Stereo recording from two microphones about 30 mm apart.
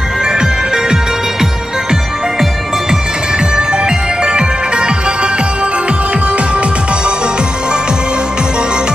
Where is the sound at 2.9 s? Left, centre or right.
Right.